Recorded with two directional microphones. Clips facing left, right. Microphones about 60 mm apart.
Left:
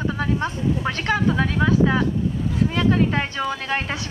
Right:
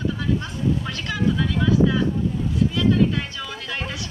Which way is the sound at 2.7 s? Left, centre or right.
Left.